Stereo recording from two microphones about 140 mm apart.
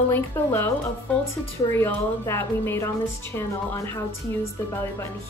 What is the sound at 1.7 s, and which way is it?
A woman's voice, 20° left (ahead or behind).